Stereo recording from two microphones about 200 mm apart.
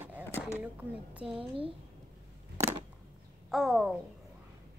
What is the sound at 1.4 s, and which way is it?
Speech, 25° right (ahead or behind).